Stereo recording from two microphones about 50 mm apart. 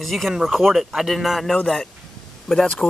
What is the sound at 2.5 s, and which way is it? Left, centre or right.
Speech, centre.